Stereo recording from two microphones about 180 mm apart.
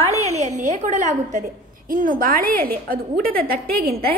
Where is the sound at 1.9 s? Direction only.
50° right (ahead or behind).